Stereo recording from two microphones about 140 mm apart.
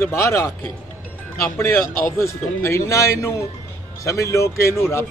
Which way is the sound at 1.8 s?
85° left.